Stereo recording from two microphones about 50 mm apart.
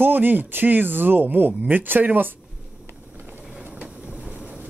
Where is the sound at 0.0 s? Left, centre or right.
Right.